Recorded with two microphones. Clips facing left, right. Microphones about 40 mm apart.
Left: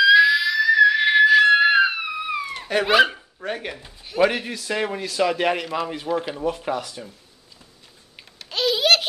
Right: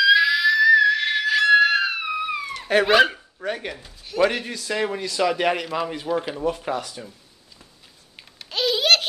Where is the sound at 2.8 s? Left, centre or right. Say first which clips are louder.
Left 1 dB; centre.